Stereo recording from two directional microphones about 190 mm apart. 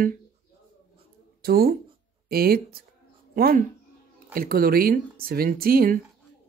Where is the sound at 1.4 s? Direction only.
55° right (ahead or behind).